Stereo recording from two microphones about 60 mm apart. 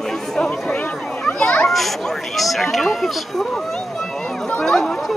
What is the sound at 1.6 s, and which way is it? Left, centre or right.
A child's voice, centre.